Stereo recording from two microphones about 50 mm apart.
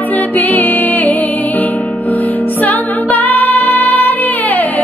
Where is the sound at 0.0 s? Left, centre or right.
Left.